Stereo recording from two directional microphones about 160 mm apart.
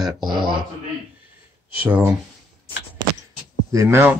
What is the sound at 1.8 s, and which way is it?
Speech, 15° right (ahead or behind).